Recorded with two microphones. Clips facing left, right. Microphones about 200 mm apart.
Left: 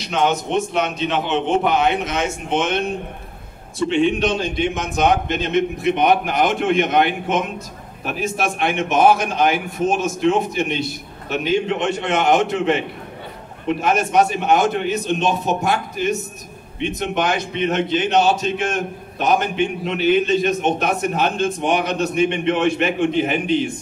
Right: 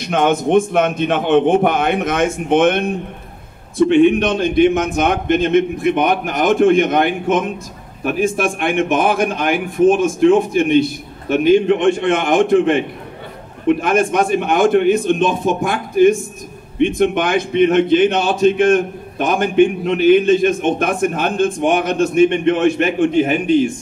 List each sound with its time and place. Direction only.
0.0 s a man's voice: 55° right (ahead or behind)